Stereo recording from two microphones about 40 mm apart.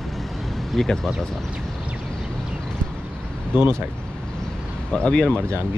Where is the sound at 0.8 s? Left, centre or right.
Centre.